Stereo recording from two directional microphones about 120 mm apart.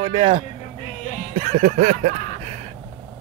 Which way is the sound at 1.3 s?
75° right (ahead or behind).